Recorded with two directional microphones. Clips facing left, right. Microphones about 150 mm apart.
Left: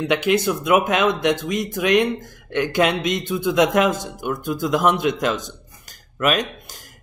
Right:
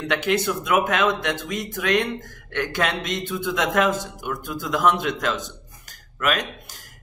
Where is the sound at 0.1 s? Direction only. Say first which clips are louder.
Left 3 dB; 15° left (ahead or behind).